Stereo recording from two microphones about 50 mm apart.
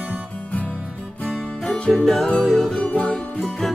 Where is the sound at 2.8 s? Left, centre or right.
Left.